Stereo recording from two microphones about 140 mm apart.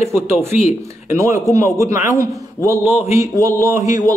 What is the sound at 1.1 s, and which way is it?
A man's voice, 20° right (ahead or behind).